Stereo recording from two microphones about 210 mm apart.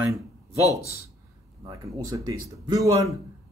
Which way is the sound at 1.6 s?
15° right (ahead or behind).